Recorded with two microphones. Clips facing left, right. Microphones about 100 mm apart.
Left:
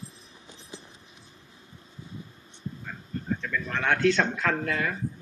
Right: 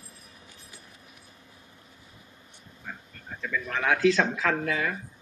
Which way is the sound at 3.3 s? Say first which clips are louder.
Left 2 dB; 5° right (ahead or behind).